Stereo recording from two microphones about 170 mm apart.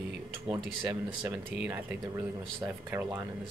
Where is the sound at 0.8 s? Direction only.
10° right (ahead or behind).